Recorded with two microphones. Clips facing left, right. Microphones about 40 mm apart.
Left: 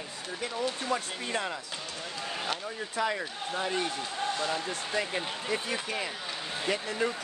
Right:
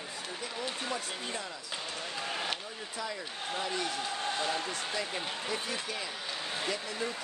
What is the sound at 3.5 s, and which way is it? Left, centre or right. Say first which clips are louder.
Speech: left 4 dB; left.